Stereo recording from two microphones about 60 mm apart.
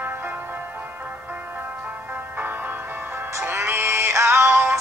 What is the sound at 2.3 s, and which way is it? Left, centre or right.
Music, right.